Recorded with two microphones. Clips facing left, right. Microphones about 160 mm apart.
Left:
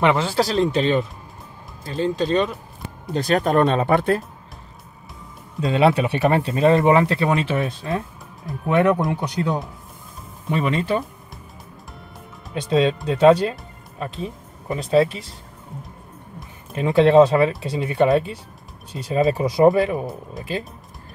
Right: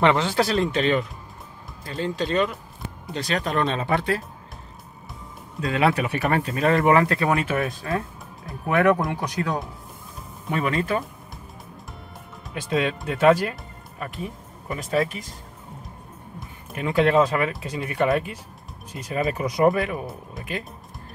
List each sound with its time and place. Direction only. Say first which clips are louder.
0.0 s speech: left 1 dB; 5° left (ahead or behind)
1.9 s speech: left 5 dB; 30° left (ahead or behind)
3.2 s speech: left 7 dB; 50° left (ahead or behind)
5.7 s speech: left 4 dB; 25° left (ahead or behind)
12.5 s speech: left 5 dB; 30° left (ahead or behind)
16.7 s speech: left 6 dB; 25° left (ahead or behind)